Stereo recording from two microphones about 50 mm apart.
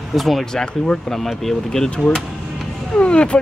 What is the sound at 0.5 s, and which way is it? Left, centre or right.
Speech, centre.